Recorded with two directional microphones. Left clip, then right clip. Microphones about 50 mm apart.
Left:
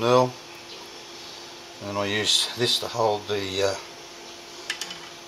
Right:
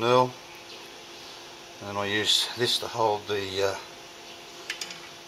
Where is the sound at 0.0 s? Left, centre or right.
Right.